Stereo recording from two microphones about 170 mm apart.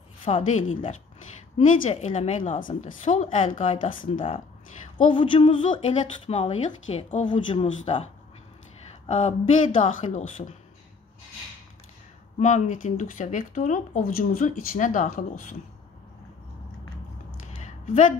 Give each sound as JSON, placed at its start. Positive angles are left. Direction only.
{"t": 0.3, "sound": "speech", "side_deg": 45}
{"t": 5.1, "sound": "speech", "side_deg": 30}
{"t": 12.4, "sound": "speech", "side_deg": 45}
{"t": 17.6, "sound": "a sound", "side_deg": 45}